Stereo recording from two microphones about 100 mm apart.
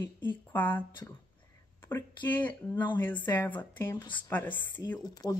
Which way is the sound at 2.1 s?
15° left (ahead or behind).